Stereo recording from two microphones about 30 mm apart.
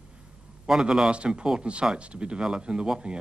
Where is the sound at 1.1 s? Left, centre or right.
Right.